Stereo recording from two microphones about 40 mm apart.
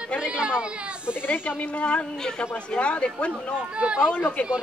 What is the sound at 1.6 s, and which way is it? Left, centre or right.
Speech, left.